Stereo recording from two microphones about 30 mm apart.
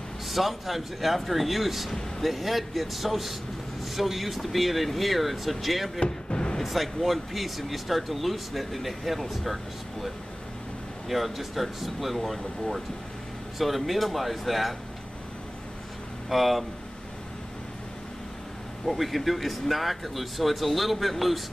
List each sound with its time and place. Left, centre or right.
0.3 s speech: centre
5.9 s a sound: left
6.6 s speech: centre
11.1 s speech: centre
16.3 s speech: centre
18.9 s speech: centre